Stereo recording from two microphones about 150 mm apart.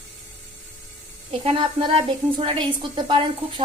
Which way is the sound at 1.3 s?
35° right (ahead or behind).